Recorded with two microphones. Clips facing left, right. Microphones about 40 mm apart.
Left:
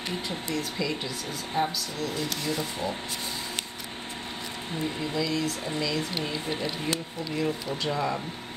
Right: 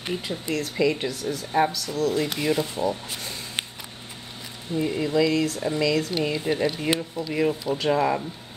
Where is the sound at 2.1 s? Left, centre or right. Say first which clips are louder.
Right 7 dB; right.